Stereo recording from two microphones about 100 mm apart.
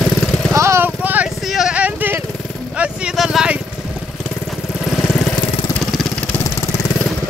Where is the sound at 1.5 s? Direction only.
5° right (ahead or behind).